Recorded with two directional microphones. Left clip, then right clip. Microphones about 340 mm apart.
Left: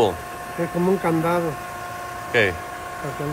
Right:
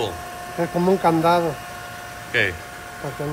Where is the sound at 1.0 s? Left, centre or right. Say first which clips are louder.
Right 4 dB; right.